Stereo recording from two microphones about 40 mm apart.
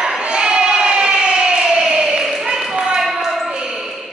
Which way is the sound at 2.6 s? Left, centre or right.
Centre.